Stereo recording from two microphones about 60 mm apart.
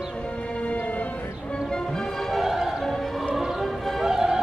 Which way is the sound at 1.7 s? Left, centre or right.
Centre.